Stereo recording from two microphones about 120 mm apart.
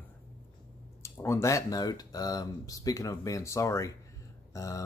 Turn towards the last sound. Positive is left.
turn(degrees=30)  # may be behind; listen again after turning